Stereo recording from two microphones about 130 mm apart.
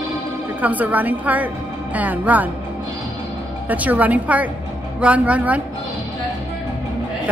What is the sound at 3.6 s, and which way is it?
A woman's voice, 10° right (ahead or behind).